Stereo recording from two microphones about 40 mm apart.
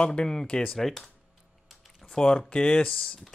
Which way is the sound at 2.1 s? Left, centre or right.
Left.